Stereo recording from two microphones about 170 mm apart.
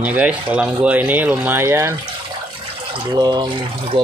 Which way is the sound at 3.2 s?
25° right (ahead or behind).